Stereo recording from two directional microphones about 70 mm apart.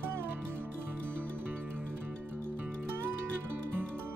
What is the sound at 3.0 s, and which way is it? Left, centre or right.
Music, right.